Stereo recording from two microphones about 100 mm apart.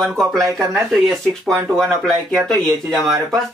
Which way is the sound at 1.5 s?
5° left (ahead or behind).